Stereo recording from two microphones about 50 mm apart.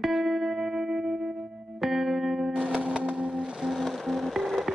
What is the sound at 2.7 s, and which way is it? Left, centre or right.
Vehicle, right.